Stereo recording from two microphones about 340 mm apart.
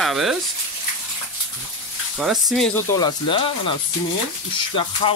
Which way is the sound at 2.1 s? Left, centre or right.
Centre.